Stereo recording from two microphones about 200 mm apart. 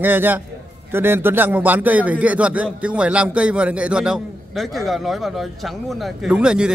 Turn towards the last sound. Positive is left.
turn(degrees=-5)  # may be behind; listen again after turning